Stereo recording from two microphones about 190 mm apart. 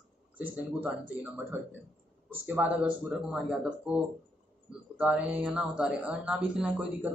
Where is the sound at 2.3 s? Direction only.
10° right (ahead or behind).